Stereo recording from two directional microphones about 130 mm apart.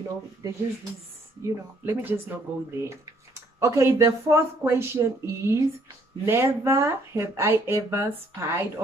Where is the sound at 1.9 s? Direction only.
15° right (ahead or behind).